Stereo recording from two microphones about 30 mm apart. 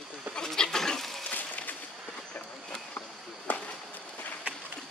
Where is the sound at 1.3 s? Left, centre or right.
Left.